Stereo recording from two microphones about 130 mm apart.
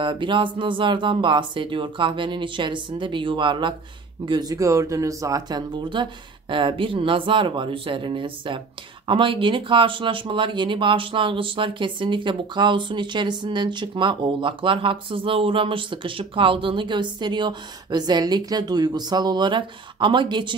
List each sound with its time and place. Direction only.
0.0 s speech: 40° right (ahead or behind)
5.9 s speech: 35° right (ahead or behind)